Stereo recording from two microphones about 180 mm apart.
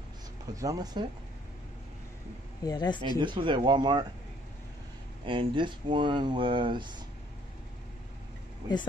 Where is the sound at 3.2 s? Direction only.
25° right (ahead or behind).